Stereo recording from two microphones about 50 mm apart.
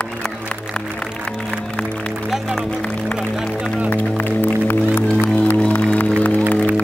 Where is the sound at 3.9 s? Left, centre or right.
Left.